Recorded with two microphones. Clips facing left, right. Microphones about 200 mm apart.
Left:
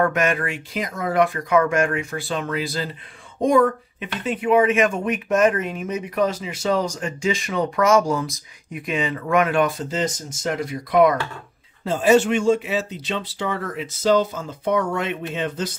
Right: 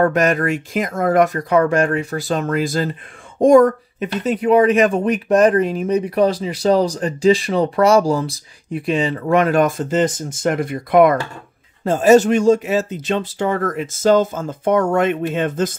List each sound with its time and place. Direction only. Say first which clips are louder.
0.0 s speech: right 5 dB; 35° right (ahead or behind)